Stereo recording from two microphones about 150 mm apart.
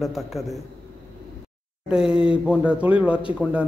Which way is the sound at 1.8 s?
5° right (ahead or behind).